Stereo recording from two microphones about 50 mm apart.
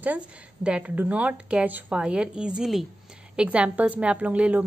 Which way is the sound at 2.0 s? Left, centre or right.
Centre.